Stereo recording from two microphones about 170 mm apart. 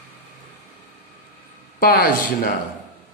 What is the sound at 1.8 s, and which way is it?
Speech, 55° left (ahead or behind).